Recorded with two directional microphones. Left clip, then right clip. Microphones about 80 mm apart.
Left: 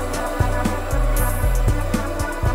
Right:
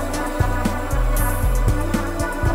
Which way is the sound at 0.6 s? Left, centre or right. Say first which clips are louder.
Even; centre.